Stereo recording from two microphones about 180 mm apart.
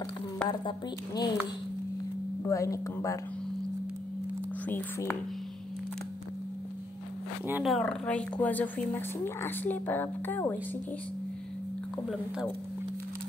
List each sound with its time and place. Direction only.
0.5 s speech: 25° left (ahead or behind)
2.4 s speech: 15° left (ahead or behind)
4.6 s speech: 10° left (ahead or behind)
7.6 s speech: 5° left (ahead or behind)